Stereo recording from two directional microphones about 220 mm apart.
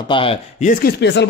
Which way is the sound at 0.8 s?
50° left (ahead or behind).